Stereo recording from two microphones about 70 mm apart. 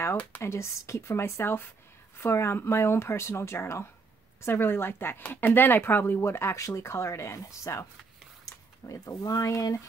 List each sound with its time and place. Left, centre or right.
0.4 s speech: left